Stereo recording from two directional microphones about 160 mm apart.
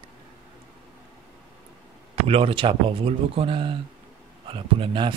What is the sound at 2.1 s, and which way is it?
Speech, 35° right (ahead or behind).